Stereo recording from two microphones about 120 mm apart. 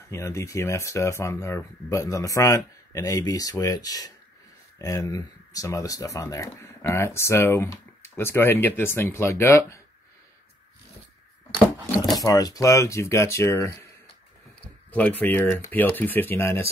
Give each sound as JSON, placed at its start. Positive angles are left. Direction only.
{"t": 0.1, "sound": "speech", "side_deg": 25}
{"t": 12.2, "sound": "speech", "side_deg": 30}
{"t": 14.9, "sound": "speech", "side_deg": 15}